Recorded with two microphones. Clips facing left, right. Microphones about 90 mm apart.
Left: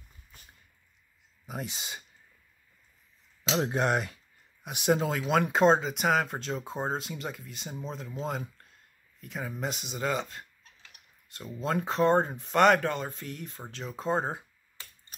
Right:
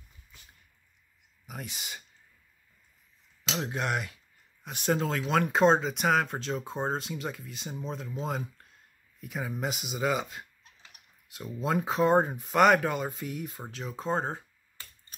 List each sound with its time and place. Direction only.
1.4 s speech: 25° left (ahead or behind)
3.6 s speech: 30° left (ahead or behind)
4.6 s speech: 15° left (ahead or behind)